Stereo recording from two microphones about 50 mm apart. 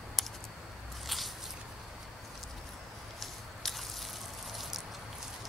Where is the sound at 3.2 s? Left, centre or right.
Centre.